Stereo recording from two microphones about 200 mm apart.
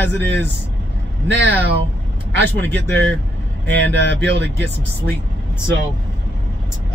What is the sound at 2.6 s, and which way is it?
Speech, 60° right (ahead or behind).